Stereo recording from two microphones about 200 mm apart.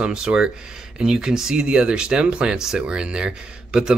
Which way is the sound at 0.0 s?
5° right (ahead or behind).